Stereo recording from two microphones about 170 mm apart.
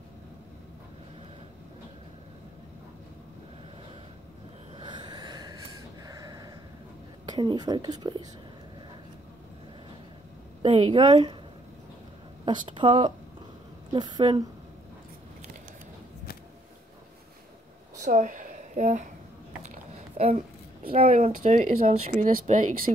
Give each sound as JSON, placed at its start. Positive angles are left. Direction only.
{"t": 4.7, "sound": "snort", "side_deg": -25}
{"t": 7.3, "sound": "speech", "side_deg": -25}
{"t": 10.6, "sound": "a woman's voice", "side_deg": -35}
{"t": 12.4, "sound": "a woman's voice", "side_deg": -30}
{"t": 18.0, "sound": "speech", "side_deg": -50}
{"t": 19.6, "sound": "a sound", "side_deg": -40}
{"t": 20.9, "sound": "a woman's voice", "side_deg": -35}
{"t": 21.4, "sound": "speech", "side_deg": -45}